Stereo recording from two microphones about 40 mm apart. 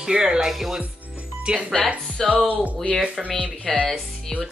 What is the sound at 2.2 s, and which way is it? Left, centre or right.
Speech, centre.